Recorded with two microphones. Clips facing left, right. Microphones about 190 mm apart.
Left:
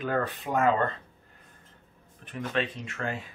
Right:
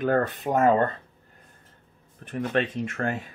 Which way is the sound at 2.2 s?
45° right (ahead or behind).